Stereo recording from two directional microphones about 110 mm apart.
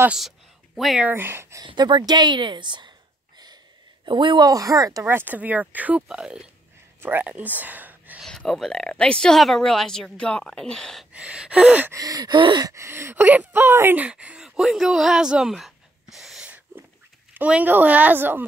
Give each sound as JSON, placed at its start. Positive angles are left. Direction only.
{"t": 0.7, "sound": "a woman's voice", "side_deg": 0}
{"t": 1.0, "sound": "speech", "side_deg": -20}
{"t": 1.7, "sound": "speech", "side_deg": -45}
{"t": 4.0, "sound": "speech", "side_deg": -45}
{"t": 4.5, "sound": "gasp", "side_deg": -30}
{"t": 5.1, "sound": "a woman's voice", "side_deg": -15}
{"t": 7.0, "sound": "speech", "side_deg": -20}
{"t": 8.2, "sound": "a woman's voice", "side_deg": 5}
{"t": 11.1, "sound": "a woman's voice", "side_deg": -10}
{"t": 11.9, "sound": "gasp", "side_deg": -35}
{"t": 12.7, "sound": "a woman's voice", "side_deg": -25}